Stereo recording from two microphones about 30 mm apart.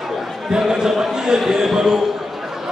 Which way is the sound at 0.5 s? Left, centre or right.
Right.